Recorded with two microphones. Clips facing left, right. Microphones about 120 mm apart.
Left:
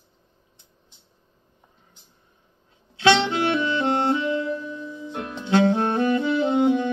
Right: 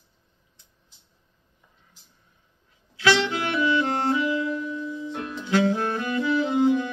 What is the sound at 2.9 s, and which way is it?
Music, 25° left (ahead or behind).